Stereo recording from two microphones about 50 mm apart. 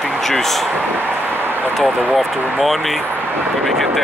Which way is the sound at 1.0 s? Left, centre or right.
Right.